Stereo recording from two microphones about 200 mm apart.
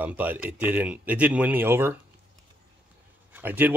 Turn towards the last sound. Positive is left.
turn(degrees=-10)  # may be behind; listen again after turning